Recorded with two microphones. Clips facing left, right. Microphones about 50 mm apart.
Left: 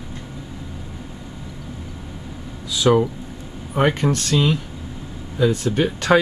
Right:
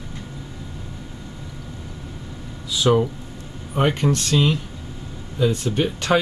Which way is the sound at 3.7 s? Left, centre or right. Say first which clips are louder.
Left 2 dB; centre.